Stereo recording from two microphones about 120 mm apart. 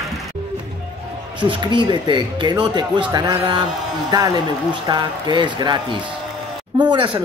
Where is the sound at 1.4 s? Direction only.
40° right (ahead or behind).